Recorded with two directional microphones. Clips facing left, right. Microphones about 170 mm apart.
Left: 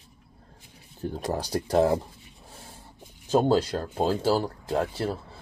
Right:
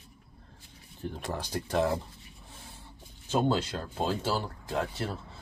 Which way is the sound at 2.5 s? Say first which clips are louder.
Left 3 dB; 40° left (ahead or behind).